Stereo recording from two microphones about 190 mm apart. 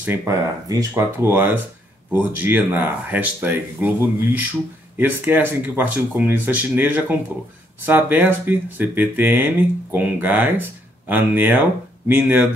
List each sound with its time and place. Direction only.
0.0 s speech: 15° right (ahead or behind)